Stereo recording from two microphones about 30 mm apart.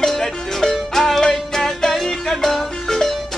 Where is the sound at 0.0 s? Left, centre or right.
Centre.